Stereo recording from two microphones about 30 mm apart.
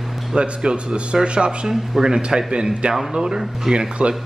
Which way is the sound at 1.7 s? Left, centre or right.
Centre.